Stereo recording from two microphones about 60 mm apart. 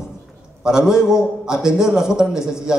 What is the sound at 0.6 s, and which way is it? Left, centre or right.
Speech, centre.